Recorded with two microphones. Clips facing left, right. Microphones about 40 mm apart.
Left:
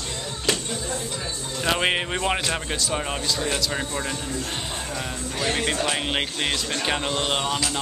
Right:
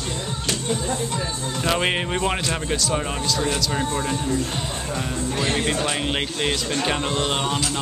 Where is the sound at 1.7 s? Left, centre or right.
Centre.